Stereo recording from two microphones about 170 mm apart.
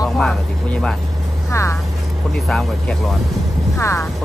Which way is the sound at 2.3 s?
5° left (ahead or behind).